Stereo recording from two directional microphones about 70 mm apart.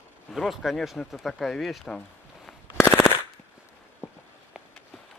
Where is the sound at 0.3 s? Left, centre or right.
Centre.